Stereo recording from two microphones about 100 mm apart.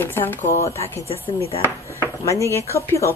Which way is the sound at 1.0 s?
75° left (ahead or behind).